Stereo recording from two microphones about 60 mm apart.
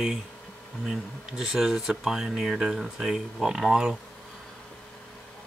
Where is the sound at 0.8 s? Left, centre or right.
Centre.